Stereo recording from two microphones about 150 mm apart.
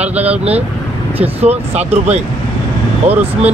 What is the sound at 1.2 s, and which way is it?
Speech, 45° right (ahead or behind).